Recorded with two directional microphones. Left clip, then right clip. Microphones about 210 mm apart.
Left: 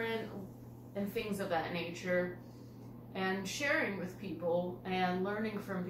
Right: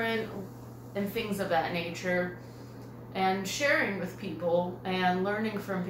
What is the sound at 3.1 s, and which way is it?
Speech, centre (ahead or behind).